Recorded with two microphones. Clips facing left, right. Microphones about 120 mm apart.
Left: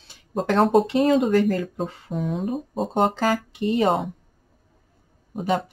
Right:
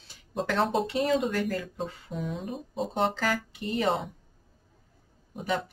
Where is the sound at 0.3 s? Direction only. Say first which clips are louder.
Left 8 dB; 45° left (ahead or behind).